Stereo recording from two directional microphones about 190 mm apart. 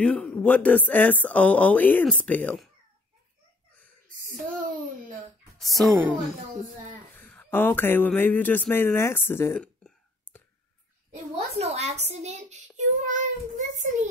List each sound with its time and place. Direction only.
0.0 s speech: 5° left (ahead or behind)
4.2 s a sound: 45° right (ahead or behind)
5.6 s a woman's voice: centre (ahead or behind)
5.9 s a woman's voice: 10° right (ahead or behind)
7.2 s speech: 10° left (ahead or behind)
11.5 s a woman's voice: 35° right (ahead or behind)
12.7 s child singing: 40° right (ahead or behind)